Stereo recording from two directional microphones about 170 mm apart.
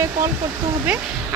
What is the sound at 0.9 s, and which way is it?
Speech, 5° right (ahead or behind).